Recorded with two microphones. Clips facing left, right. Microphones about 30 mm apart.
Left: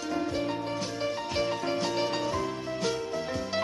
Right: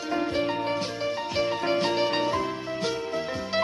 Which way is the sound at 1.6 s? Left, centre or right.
Right.